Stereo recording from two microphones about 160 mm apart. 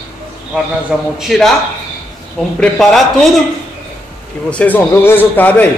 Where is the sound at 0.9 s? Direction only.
5° right (ahead or behind).